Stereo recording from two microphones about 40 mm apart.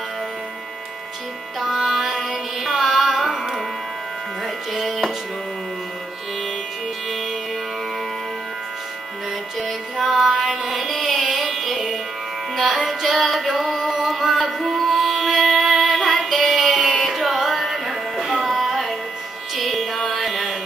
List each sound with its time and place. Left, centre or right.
1.6 s music: centre
4.7 s music: centre
9.6 s music: centre